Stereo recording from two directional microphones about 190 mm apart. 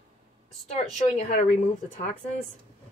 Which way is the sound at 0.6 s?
35° left (ahead or behind).